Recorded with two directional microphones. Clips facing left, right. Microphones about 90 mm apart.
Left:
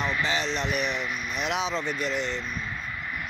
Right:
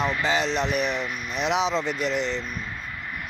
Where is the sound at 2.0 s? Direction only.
90° right.